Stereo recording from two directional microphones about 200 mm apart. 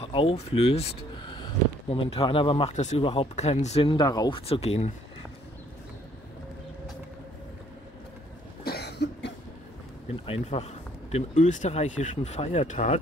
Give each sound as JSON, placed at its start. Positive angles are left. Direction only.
{"t": 0.0, "sound": "speech", "side_deg": 25}
{"t": 1.9, "sound": "speech", "side_deg": 30}
{"t": 8.6, "sound": "cough", "side_deg": 55}
{"t": 10.2, "sound": "speech", "side_deg": 30}